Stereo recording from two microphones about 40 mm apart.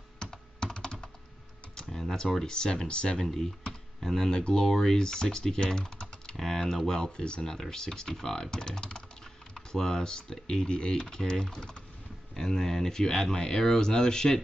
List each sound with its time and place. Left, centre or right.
0.2 s computer keyboard: centre
1.9 s speech: centre
3.3 s speech: centre